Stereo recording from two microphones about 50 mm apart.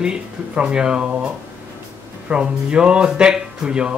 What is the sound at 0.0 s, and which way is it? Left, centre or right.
Speech, centre.